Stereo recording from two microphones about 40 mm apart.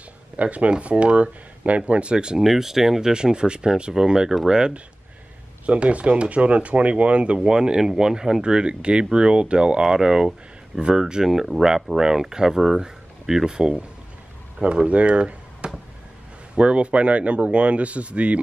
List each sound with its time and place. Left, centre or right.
0.4 s speech: right
2.4 s speech: centre
3.1 s speech: right
5.7 s speech: right
7.3 s speech: right